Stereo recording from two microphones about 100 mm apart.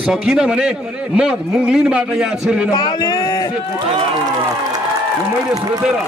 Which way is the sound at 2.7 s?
45° left (ahead or behind).